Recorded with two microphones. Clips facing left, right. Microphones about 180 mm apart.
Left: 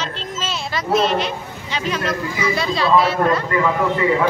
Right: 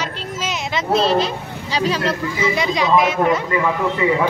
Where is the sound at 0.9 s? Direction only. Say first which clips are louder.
Right 1 dB; 35° right (ahead or behind).